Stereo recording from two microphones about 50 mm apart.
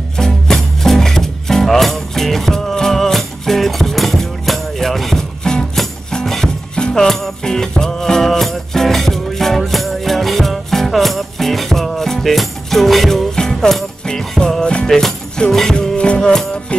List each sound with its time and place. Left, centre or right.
0.2 s music: centre
14.9 s music: centre